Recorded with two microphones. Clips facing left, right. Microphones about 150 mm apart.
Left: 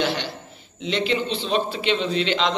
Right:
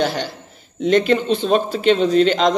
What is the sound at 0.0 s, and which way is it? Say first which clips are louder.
A man's voice: right 4 dB; 40° right (ahead or behind).